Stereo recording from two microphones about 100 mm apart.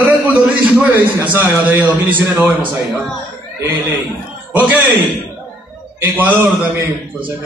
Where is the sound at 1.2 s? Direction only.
20° right (ahead or behind).